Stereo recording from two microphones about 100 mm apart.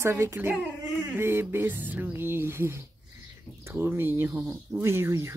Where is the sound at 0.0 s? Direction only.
25° right (ahead or behind).